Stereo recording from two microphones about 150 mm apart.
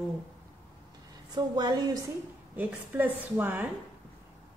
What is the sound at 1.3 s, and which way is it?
Speech, 30° right (ahead or behind).